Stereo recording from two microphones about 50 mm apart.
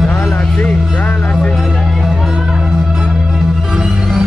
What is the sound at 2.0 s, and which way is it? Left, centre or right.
Music, centre.